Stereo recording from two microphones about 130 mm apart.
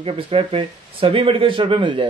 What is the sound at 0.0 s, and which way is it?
Speech, 45° right (ahead or behind).